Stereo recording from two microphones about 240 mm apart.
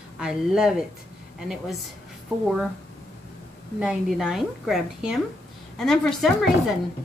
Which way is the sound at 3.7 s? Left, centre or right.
Centre.